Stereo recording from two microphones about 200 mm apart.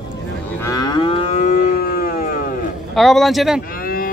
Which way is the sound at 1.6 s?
50° left (ahead or behind).